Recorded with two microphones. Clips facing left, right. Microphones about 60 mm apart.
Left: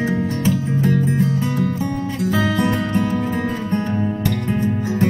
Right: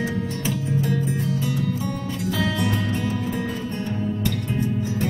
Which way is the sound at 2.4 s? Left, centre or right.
Left.